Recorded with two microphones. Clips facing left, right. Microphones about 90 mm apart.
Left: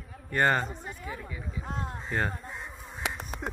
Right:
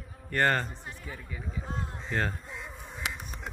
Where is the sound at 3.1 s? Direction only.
55° left (ahead or behind).